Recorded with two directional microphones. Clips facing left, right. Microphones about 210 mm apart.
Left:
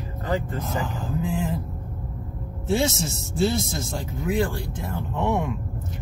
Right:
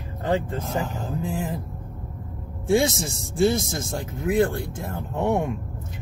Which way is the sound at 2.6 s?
15° right (ahead or behind).